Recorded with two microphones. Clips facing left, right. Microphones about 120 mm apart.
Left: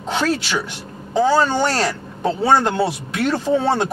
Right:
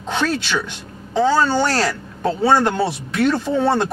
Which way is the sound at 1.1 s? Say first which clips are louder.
Even; 15° left (ahead or behind).